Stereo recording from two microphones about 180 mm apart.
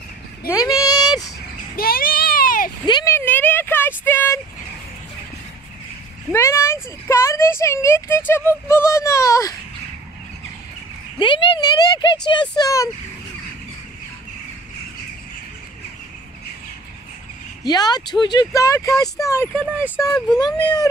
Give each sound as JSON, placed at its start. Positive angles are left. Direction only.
{"t": 0.5, "sound": "child singing", "side_deg": 20}
{"t": 1.8, "sound": "child singing", "side_deg": 55}
{"t": 2.9, "sound": "a sound", "side_deg": 20}
{"t": 6.3, "sound": "a sound", "side_deg": 15}
{"t": 11.1, "sound": "a sound", "side_deg": 25}
{"t": 12.3, "sound": "speech", "side_deg": 25}
{"t": 17.6, "sound": "speech", "side_deg": 20}
{"t": 19.5, "sound": "speech", "side_deg": 5}
{"t": 20.2, "sound": "speech", "side_deg": 20}